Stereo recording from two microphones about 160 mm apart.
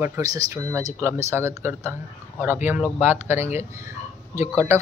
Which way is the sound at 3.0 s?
15° right (ahead or behind).